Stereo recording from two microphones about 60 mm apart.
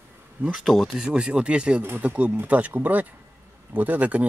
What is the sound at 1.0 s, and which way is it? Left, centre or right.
Speech, centre.